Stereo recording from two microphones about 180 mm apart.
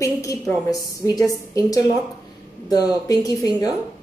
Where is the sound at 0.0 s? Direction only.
20° left (ahead or behind).